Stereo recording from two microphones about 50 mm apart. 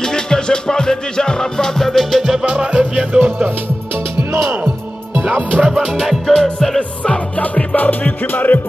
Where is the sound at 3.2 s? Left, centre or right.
Right.